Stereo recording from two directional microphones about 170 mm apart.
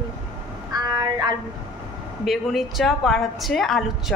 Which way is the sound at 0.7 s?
20° right (ahead or behind).